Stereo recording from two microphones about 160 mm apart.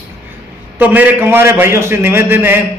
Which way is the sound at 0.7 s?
10° right (ahead or behind).